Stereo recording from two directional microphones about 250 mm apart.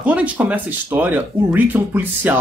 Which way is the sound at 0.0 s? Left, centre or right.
Centre.